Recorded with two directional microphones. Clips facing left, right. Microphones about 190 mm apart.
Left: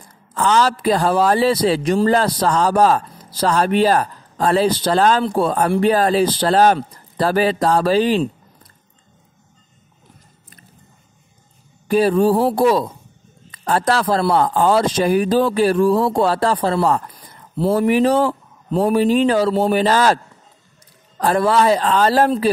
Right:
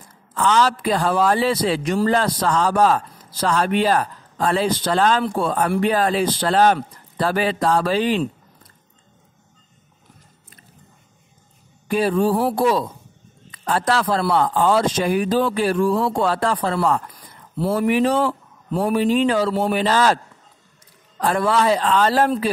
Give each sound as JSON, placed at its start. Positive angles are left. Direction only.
{"t": 0.3, "sound": "a man's voice", "side_deg": 40}
{"t": 11.9, "sound": "a man's voice", "side_deg": 40}
{"t": 18.7, "sound": "speech", "side_deg": 25}
{"t": 18.9, "sound": "a man's voice", "side_deg": 40}
{"t": 21.2, "sound": "a man's voice", "side_deg": 40}